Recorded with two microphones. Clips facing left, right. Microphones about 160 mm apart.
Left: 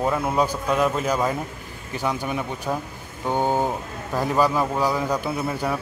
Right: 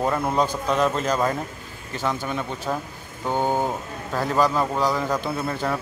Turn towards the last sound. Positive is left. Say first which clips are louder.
# even
turn(degrees=10)  # may be behind; listen again after turning